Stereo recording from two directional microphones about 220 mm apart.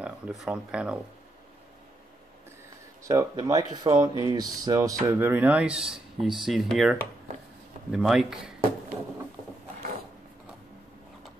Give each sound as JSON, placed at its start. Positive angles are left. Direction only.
{"t": 0.0, "sound": "speech", "side_deg": -5}
{"t": 3.0, "sound": "speech", "side_deg": -15}